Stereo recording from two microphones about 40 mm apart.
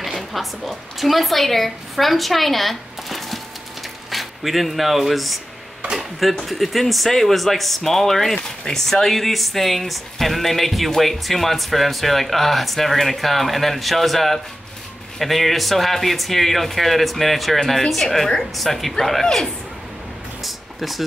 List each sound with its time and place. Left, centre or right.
0.0 s a woman's voice: centre
6.4 s speech: centre
20.4 s music: centre